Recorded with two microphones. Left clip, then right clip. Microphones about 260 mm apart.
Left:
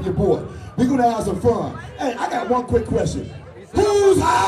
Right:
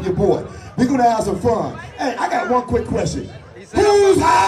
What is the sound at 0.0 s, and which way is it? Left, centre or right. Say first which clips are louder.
A man's voice: right 2 dB; right.